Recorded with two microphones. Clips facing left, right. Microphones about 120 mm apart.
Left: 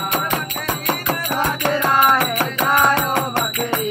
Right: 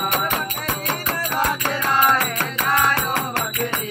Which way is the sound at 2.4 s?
15° left (ahead or behind).